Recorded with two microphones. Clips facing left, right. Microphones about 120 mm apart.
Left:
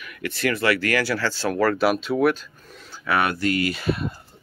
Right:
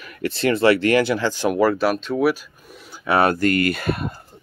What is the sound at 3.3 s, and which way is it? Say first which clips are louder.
Speech: right 4 dB; 50° right (ahead or behind).